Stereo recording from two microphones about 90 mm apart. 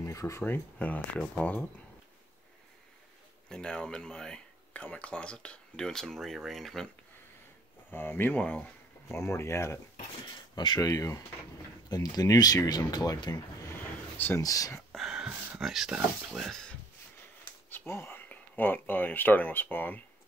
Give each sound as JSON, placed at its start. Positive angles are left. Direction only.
{"t": 0.0, "sound": "speech", "side_deg": 35}
{"t": 0.4, "sound": "speech", "side_deg": 15}
{"t": 3.4, "sound": "speech", "side_deg": 10}
{"t": 7.9, "sound": "speech", "side_deg": 20}
{"t": 9.1, "sound": "speech", "side_deg": 30}
{"t": 10.2, "sound": "speech", "side_deg": 55}
{"t": 14.1, "sound": "speech", "side_deg": 20}
{"t": 14.4, "sound": "speech", "side_deg": 40}
{"t": 15.0, "sound": "speech", "side_deg": -5}
{"t": 17.6, "sound": "speech", "side_deg": 25}